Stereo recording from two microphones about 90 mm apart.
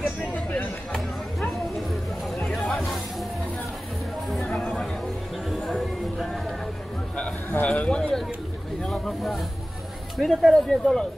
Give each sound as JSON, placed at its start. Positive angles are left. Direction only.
{"t": 0.2, "sound": "a sound", "side_deg": 20}
{"t": 2.4, "sound": "music", "side_deg": 0}
{"t": 4.3, "sound": "chatter", "side_deg": 0}
{"t": 5.5, "sound": "music", "side_deg": -5}
{"t": 7.5, "sound": "a sound", "side_deg": 15}
{"t": 10.1, "sound": "speech", "side_deg": 0}